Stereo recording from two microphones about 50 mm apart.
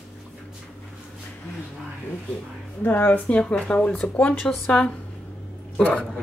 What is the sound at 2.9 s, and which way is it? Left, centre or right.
Speech, left.